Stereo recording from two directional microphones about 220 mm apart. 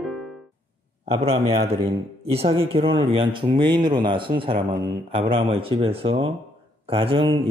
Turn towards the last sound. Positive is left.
turn(degrees=-25)  # may be behind; listen again after turning